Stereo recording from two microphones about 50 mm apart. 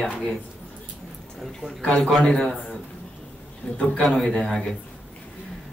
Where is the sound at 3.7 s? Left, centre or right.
Left.